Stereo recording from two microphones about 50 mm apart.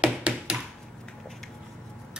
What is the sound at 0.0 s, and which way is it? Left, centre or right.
Tap, right.